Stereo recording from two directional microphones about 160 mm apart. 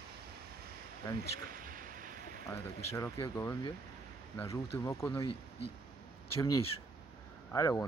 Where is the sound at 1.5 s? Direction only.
60° right (ahead or behind).